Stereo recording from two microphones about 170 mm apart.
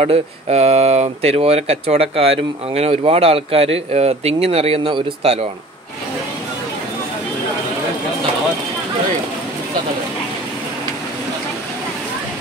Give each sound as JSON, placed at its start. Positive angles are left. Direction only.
{"t": 0.0, "sound": "speech", "side_deg": -40}